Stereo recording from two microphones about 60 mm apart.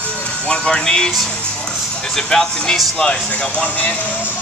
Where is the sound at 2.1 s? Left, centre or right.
Centre.